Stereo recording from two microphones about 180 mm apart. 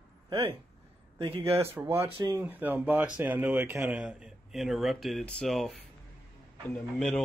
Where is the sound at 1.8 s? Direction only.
15° right (ahead or behind).